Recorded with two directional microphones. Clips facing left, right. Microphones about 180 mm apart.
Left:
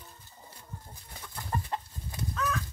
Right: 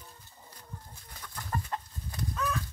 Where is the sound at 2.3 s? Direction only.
10° right (ahead or behind).